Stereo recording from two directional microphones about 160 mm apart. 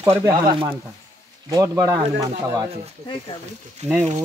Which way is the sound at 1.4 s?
20° right (ahead or behind).